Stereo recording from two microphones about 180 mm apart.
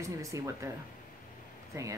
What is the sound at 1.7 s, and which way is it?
Speech, 15° right (ahead or behind).